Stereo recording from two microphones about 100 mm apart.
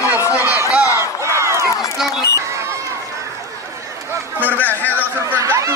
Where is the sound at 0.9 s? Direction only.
30° right (ahead or behind).